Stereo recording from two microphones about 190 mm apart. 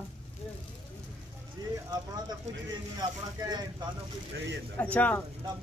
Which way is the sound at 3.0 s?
20° right (ahead or behind).